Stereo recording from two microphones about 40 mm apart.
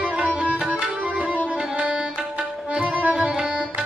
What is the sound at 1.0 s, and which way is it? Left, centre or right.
Tabla, right.